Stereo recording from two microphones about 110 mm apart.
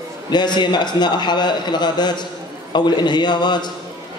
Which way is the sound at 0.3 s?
40° left (ahead or behind).